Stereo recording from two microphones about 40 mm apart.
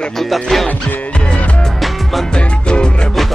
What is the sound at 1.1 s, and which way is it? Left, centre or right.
Music, left.